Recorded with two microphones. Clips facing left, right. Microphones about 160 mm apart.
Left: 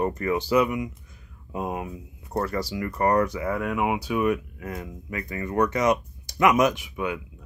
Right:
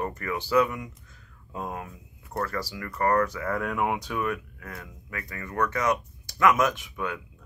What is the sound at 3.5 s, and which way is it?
Speech, 5° left (ahead or behind).